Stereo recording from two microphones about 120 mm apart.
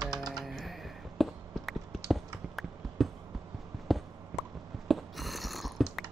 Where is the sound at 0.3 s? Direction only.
Centre (ahead or behind).